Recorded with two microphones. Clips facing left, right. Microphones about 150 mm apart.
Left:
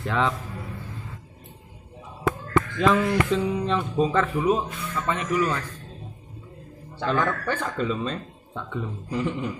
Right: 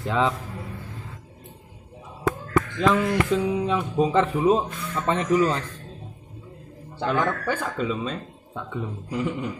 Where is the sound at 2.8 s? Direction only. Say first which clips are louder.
Even; centre (ahead or behind); by 5.6 s 30° right (ahead or behind).